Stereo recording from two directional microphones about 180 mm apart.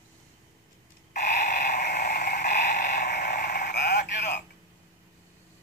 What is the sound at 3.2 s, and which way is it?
Sheep, 45° left (ahead or behind).